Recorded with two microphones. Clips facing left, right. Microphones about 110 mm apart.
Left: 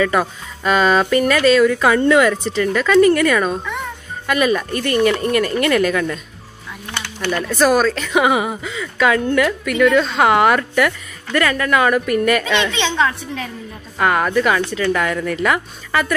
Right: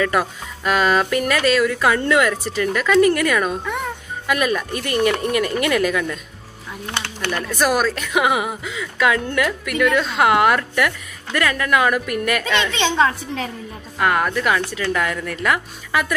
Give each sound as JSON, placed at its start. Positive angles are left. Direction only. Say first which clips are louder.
{"t": 0.0, "sound": "a woman's voice", "louder": "left 2 dB", "side_deg": -5}
{"t": 7.2, "sound": "a woman's voice", "louder": "left 5 dB", "side_deg": 0}
{"t": 12.7, "sound": "a woman's voice", "louder": "even", "side_deg": -40}
{"t": 13.9, "sound": "a woman's voice", "louder": "left 3 dB", "side_deg": 0}